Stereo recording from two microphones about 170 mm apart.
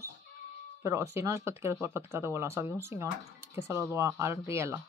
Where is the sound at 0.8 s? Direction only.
15° right (ahead or behind).